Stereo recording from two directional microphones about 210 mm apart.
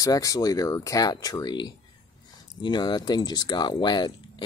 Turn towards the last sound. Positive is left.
turn(degrees=20)  # may be behind; listen again after turning